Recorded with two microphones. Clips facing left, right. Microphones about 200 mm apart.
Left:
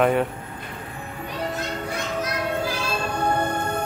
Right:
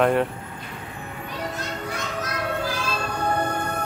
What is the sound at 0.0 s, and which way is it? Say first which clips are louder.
Speech: even; centre (ahead or behind).